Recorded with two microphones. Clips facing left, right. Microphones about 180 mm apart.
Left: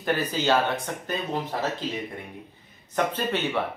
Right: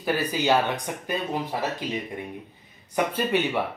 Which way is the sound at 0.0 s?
10° right (ahead or behind).